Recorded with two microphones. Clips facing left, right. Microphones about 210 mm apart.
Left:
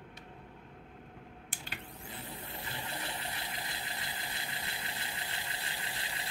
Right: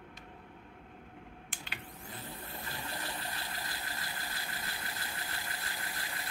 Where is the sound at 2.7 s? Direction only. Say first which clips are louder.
Even; 20° left (ahead or behind).